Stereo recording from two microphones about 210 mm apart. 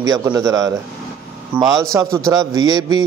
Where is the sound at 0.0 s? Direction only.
15° right (ahead or behind).